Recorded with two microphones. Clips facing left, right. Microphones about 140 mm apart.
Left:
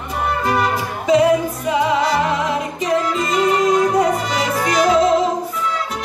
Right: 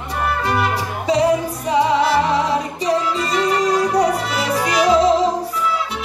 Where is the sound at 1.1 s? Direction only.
35° right (ahead or behind).